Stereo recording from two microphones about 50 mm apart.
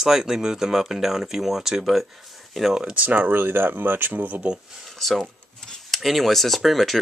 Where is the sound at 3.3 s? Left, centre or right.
Right.